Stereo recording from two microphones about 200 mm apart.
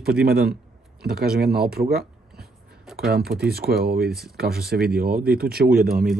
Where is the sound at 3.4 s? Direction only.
50° right (ahead or behind).